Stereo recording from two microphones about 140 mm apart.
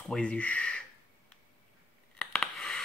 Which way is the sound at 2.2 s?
5° left (ahead or behind).